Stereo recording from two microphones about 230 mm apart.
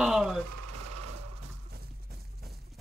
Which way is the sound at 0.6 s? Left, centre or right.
Right.